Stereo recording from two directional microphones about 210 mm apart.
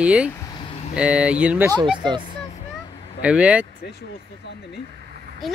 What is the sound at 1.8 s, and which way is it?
Speech, 20° right (ahead or behind).